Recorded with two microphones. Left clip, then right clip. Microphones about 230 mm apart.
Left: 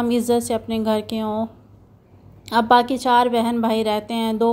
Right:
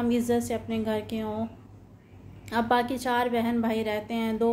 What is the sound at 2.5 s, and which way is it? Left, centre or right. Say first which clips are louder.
Speech: left 9 dB; left.